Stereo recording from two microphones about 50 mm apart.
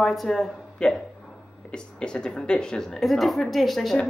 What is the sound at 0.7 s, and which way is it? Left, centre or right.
Speech, centre.